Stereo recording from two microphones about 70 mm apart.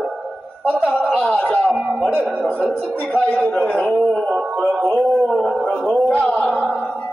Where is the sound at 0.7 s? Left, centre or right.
Centre.